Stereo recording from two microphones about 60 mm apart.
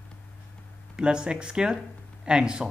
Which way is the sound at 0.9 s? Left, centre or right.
Centre.